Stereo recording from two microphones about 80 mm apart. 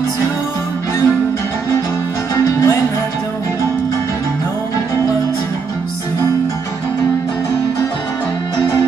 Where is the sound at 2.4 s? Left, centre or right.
Left.